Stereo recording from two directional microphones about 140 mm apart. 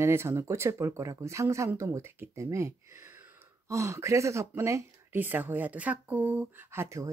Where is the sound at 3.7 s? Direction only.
20° right (ahead or behind).